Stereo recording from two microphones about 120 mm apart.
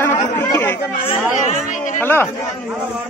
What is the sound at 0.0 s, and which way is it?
Chatter, 15° left (ahead or behind).